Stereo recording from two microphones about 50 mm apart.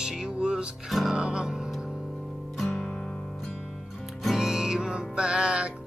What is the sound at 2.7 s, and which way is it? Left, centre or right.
Music, centre.